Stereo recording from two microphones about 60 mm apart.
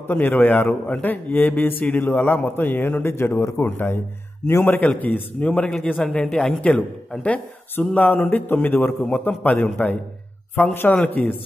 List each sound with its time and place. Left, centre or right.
0.1 s a man's voice: left
4.7 s a man's voice: left
6.0 s a woman's voice: centre
6.7 s a man's voice: left
10.9 s a man's voice: left